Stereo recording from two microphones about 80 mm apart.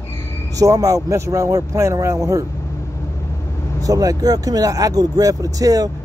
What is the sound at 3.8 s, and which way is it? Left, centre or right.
Speech, right.